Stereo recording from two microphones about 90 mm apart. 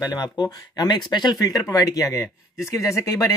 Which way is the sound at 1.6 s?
40° left (ahead or behind).